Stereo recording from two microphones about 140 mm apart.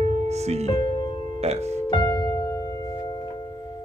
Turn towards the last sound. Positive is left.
turn(degrees=25)  # may be behind; listen again after turning